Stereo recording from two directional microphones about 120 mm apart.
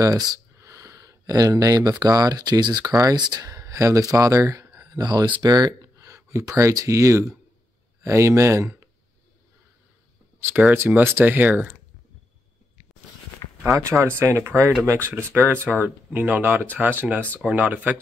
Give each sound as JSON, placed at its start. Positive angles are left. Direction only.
{"t": 0.0, "sound": "speech", "side_deg": -30}
{"t": 10.4, "sound": "speech", "side_deg": -15}
{"t": 13.7, "sound": "speech", "side_deg": -25}